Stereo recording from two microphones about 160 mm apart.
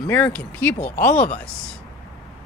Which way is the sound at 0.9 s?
55° left (ahead or behind).